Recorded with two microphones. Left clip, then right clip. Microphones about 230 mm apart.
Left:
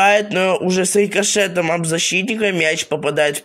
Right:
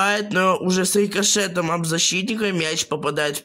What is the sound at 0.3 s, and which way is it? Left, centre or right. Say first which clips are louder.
Speech: left 2 dB; right.